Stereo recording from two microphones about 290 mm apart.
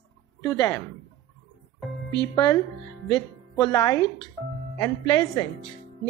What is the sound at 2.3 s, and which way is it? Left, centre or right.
A woman's voice, centre.